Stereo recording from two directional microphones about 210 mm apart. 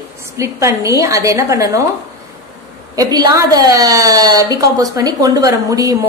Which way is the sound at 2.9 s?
20° right (ahead or behind).